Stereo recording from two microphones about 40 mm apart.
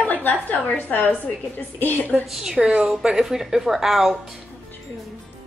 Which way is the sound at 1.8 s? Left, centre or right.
Left.